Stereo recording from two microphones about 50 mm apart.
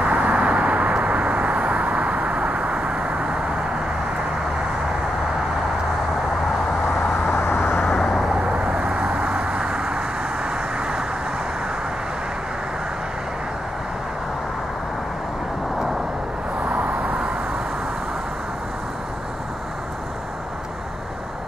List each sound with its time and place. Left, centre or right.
0.0 s vehicle: right
7.2 s vehicle: left
7.8 s vehicle: centre
8.3 s vehicle: centre
16.6 s vehicle: right